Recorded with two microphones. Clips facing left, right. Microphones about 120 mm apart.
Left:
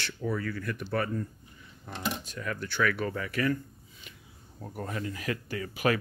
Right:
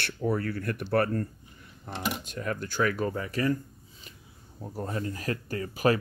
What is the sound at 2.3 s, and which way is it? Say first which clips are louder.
Speech: right 3 dB; 40° right (ahead or behind).